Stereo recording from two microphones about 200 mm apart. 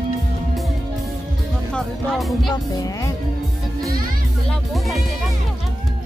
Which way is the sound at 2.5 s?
20° left (ahead or behind).